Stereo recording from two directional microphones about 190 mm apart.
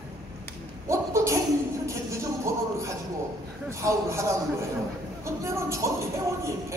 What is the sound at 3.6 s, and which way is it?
Speech, 15° right (ahead or behind).